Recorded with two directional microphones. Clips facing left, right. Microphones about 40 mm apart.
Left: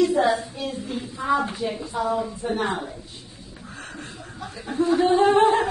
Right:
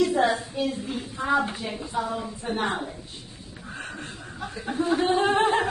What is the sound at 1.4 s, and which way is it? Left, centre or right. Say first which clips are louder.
Speech: left 3 dB; centre.